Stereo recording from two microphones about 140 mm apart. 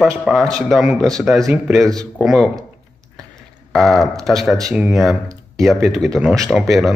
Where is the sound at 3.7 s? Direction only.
Centre (ahead or behind).